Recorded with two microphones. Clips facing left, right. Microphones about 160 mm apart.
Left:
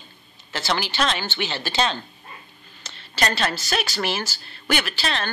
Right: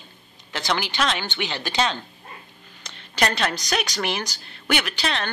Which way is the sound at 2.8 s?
15° right (ahead or behind).